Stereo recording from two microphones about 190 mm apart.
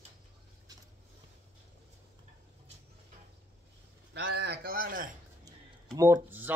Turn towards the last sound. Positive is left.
turn(degrees=-10)  # may be behind; listen again after turning